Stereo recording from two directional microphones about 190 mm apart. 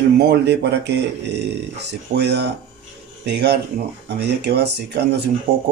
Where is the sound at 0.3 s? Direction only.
60° right (ahead or behind).